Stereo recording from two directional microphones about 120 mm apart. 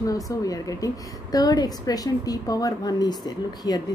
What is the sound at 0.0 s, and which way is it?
A woman's voice, 30° left (ahead or behind).